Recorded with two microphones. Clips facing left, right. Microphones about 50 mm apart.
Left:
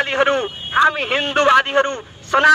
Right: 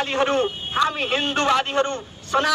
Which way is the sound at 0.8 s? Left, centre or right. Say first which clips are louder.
Left 4 dB; left.